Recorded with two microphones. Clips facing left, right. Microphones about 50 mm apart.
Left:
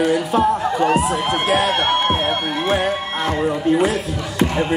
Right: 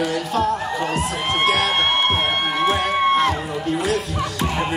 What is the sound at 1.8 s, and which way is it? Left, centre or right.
Speech, right.